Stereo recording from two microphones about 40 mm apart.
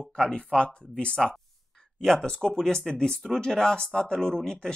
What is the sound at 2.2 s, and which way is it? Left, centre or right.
Speech, centre.